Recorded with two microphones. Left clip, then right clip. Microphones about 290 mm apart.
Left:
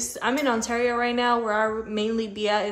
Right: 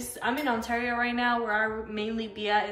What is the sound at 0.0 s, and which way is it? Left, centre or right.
A woman's voice, left.